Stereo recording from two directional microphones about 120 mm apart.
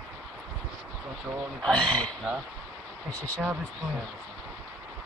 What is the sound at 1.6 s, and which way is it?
Speech, 5° left (ahead or behind).